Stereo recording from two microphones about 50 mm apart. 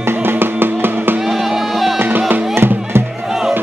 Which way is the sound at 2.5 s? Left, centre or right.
Right.